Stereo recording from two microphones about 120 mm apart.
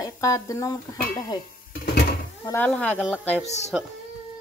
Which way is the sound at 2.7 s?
10° left (ahead or behind).